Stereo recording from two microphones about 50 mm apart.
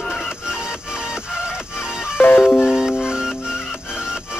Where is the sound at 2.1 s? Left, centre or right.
Left.